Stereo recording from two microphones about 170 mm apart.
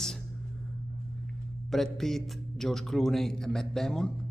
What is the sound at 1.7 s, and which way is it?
Speech, centre (ahead or behind).